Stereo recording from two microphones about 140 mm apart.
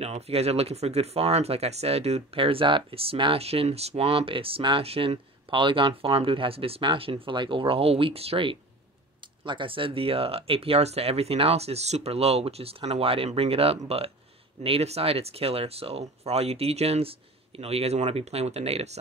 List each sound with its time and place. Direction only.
0.0 s speech: 45° right (ahead or behind)